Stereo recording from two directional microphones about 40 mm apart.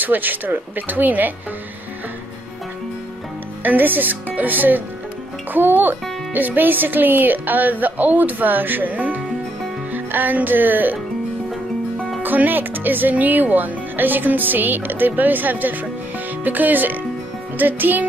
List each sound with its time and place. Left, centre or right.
0.0 s speech: right
3.6 s speech: right
8.9 s music: right
9.9 s speech: right
12.2 s speech: right